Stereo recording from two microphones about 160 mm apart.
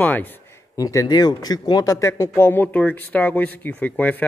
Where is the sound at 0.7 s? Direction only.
20° left (ahead or behind).